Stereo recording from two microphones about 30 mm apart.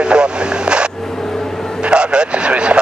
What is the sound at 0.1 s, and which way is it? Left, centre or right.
Radio, right.